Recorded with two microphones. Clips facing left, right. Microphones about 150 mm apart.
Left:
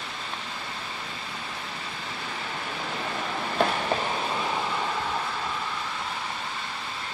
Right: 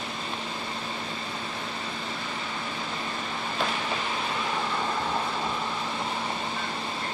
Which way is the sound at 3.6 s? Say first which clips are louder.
Left 6 dB; 60° left (ahead or behind).